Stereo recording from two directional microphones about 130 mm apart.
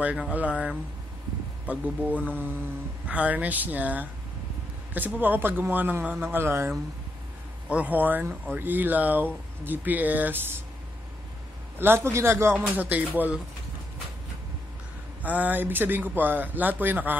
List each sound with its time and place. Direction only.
0.0 s speech: 10° right (ahead or behind)
7.7 s speech: 10° right (ahead or behind)
11.8 s speech: 20° right (ahead or behind)
15.2 s speech: 10° right (ahead or behind)